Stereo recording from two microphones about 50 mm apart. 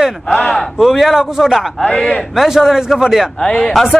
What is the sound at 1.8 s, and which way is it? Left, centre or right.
Speech, centre.